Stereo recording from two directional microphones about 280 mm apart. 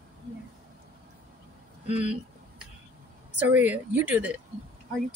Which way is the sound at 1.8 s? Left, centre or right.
Left.